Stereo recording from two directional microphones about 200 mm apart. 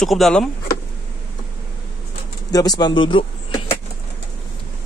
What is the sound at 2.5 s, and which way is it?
Speech, 20° left (ahead or behind).